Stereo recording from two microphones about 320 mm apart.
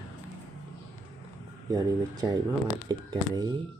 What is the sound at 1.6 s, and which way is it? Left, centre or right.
Speech, centre.